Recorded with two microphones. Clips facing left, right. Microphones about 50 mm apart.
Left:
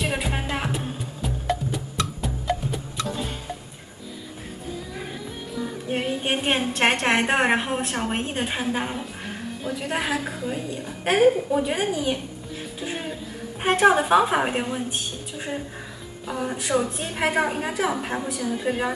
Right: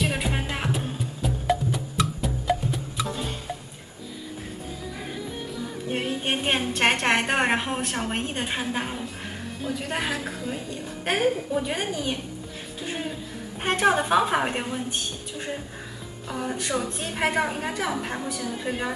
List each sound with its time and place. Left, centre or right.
0.0 s music: centre
5.5 s a woman's voice: centre